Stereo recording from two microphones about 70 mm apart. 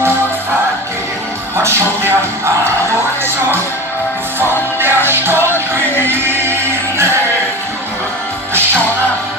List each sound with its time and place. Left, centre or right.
1.6 s music: right
4.4 s music: right